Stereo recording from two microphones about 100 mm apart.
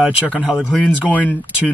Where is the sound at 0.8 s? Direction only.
15° left (ahead or behind).